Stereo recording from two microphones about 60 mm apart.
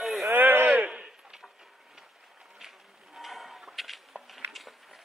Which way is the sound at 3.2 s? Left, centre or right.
Centre.